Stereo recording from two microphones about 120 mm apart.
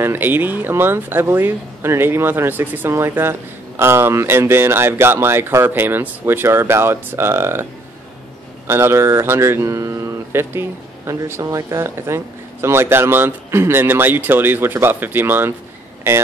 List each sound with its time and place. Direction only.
0.0 s speech: 15° right (ahead or behind)
8.6 s speech: 20° right (ahead or behind)